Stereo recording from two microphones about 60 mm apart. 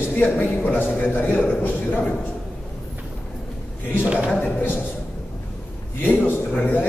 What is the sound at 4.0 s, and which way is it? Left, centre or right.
Speech, right.